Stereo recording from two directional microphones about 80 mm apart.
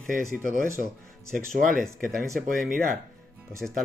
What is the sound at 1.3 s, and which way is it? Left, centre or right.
Speech, centre.